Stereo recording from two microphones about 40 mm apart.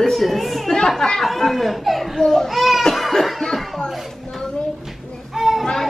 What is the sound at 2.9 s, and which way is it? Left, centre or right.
Cough, centre.